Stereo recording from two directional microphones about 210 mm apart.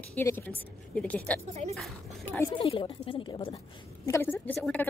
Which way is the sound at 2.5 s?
25° left (ahead or behind).